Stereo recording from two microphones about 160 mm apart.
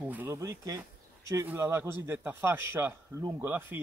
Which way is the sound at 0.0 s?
10° right (ahead or behind).